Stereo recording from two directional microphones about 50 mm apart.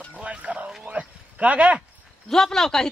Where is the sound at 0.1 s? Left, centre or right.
Right.